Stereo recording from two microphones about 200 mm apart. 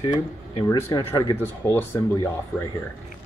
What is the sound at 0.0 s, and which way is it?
Speech, 25° left (ahead or behind).